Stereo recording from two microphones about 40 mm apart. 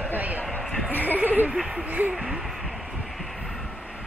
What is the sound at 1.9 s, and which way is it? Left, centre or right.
Speech, right.